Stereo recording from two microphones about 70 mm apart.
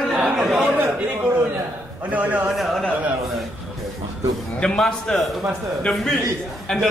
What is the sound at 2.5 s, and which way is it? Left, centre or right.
Speech, centre.